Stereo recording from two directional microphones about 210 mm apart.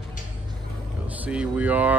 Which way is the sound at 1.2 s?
5° right (ahead or behind).